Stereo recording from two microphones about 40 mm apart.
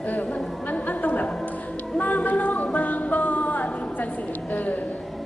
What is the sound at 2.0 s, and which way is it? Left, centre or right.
Music, left.